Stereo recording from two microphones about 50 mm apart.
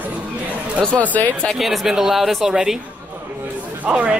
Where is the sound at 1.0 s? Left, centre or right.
Left.